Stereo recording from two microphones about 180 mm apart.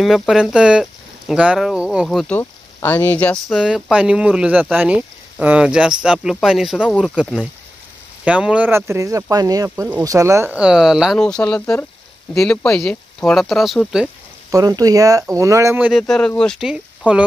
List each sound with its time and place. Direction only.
0.0 s speech: centre (ahead or behind)
14.5 s speech: 20° right (ahead or behind)
15.9 s speech: 5° left (ahead or behind)